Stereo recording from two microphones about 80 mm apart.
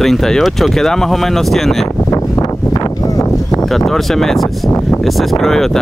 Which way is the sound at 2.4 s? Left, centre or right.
Left.